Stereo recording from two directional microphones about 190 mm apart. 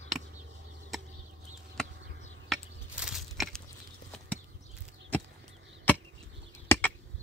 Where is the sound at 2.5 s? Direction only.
5° right (ahead or behind).